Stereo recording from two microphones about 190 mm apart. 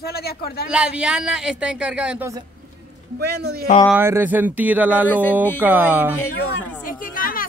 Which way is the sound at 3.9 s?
10° right (ahead or behind).